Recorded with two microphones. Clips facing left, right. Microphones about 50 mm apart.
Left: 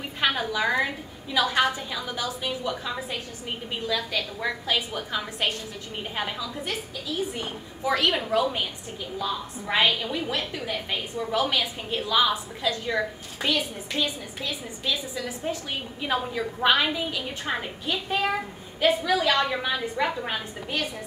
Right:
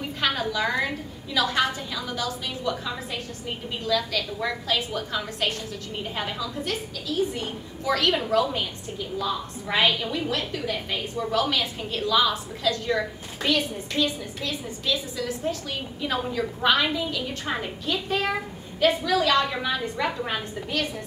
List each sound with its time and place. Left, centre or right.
0.2 s a woman's voice: centre
9.2 s a woman's voice: centre
20.1 s a woman's voice: centre